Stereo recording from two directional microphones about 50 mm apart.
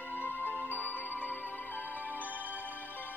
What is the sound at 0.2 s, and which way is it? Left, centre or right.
Music, left.